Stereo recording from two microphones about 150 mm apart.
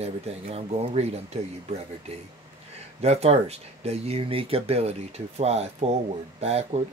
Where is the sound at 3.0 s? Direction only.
45° right (ahead or behind).